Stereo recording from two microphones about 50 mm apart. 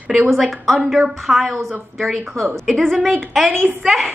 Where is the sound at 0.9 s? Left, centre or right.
Centre.